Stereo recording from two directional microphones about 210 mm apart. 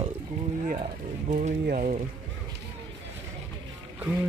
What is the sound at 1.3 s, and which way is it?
Speech, 35° right (ahead or behind).